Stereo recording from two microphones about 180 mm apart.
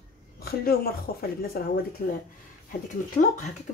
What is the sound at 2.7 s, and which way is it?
Speech, 45° left (ahead or behind).